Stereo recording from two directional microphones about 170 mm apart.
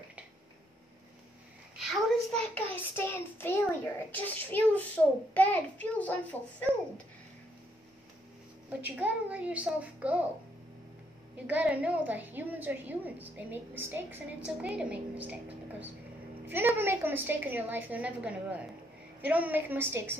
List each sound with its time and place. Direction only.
1.8 s a woman's voice: centre (ahead or behind)
2.5 s a child's voice: 10° left (ahead or behind)
8.6 s a woman's voice: 10° right (ahead or behind)
11.4 s a woman's voice: 10° right (ahead or behind)
16.4 s a woman's voice: 15° right (ahead or behind)